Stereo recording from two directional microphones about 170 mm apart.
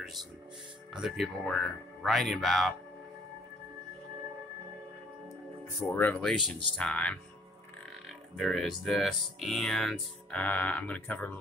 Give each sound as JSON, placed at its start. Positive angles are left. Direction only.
{"t": 0.9, "sound": "speech", "side_deg": 0}
{"t": 5.9, "sound": "speech", "side_deg": 10}
{"t": 8.4, "sound": "speech", "side_deg": 0}